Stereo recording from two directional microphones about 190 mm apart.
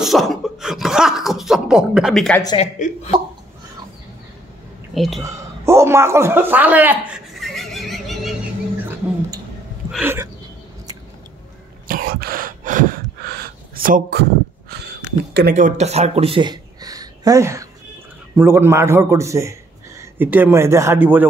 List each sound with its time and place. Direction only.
0.0 s speech: centre (ahead or behind)
2.5 s speech: 35° left (ahead or behind)
4.9 s speech: centre (ahead or behind)
5.2 s a man's voice: 15° right (ahead or behind)
7.3 s a sound: centre (ahead or behind)
11.9 s a sound: 50° right (ahead or behind)
15.5 s a man's voice: 35° right (ahead or behind); by 21.3 s 10° right (ahead or behind)